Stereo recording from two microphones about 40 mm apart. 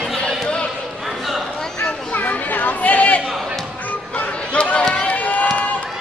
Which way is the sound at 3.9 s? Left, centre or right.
Left.